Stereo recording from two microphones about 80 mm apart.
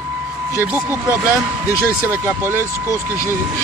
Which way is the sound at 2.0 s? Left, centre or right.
Right.